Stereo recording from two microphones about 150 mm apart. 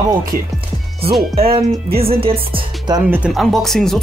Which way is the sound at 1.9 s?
40° right (ahead or behind).